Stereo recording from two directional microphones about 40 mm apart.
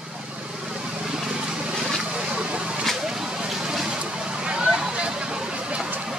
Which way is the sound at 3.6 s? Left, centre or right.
Centre.